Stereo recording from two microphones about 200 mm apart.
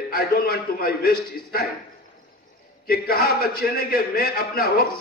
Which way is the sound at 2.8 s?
50° left (ahead or behind).